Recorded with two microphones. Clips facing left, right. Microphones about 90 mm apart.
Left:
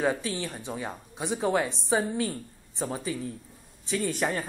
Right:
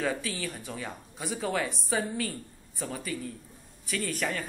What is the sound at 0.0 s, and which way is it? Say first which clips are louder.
A man's voice: left 3 dB; 20° left (ahead or behind).